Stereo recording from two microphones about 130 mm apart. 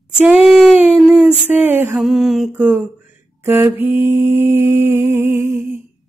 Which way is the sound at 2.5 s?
15° right (ahead or behind).